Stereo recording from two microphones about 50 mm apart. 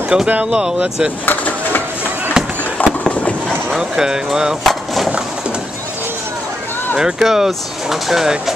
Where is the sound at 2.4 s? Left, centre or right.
Centre.